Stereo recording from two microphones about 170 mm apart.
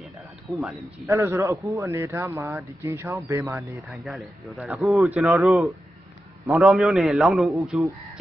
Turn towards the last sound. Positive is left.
turn(degrees=0)  # may be behind; listen again after turning